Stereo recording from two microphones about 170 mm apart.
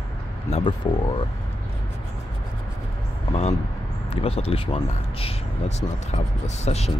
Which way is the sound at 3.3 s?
40° left (ahead or behind).